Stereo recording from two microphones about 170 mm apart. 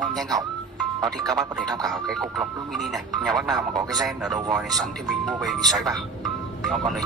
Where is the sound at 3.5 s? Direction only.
20° right (ahead or behind).